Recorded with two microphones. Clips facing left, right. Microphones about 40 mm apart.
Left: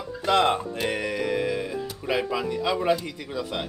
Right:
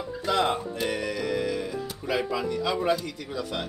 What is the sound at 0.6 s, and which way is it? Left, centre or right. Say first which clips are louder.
Speech: left 1 dB; left.